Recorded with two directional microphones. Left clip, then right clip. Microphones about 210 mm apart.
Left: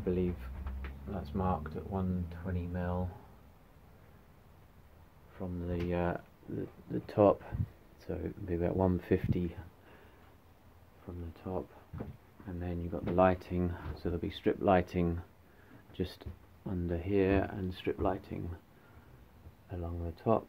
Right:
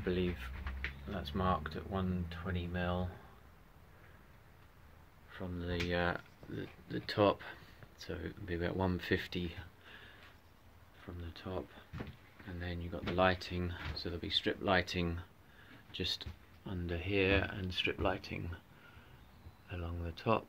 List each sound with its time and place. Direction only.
0.0 s speech: 5° left (ahead or behind)
5.4 s speech: 5° left (ahead or behind)
11.3 s speech: 10° left (ahead or behind)
19.7 s speech: 5° left (ahead or behind)